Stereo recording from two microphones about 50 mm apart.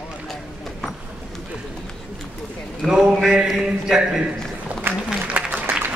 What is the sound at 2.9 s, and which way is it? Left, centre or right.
A man's voice, centre.